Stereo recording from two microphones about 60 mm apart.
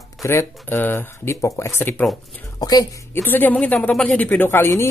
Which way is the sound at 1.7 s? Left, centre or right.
Left.